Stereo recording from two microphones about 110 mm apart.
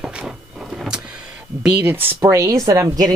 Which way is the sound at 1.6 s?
15° right (ahead or behind).